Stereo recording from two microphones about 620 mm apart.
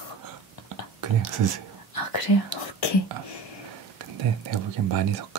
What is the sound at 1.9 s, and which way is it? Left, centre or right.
Whispering, left.